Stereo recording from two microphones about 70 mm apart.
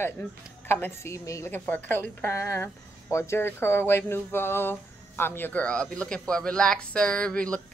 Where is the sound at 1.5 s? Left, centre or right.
Left.